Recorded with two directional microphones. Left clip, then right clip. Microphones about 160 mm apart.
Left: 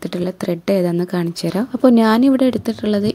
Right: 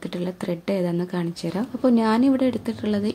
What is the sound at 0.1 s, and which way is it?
A woman's voice, 40° left (ahead or behind).